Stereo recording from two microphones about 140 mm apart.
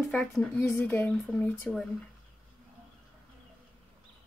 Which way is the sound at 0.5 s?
15° left (ahead or behind).